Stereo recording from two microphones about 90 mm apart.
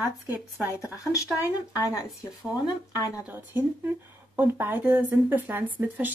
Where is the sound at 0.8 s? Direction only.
35° left (ahead or behind).